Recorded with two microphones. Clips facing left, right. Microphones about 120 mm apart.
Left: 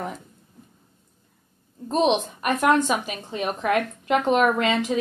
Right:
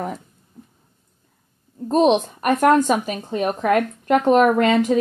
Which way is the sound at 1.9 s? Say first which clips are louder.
Right 5 dB; 45° right (ahead or behind).